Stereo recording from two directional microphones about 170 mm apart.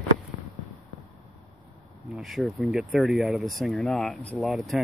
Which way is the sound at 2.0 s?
Centre (ahead or behind).